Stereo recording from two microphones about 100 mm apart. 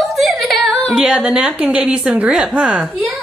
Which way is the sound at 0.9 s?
10° right (ahead or behind).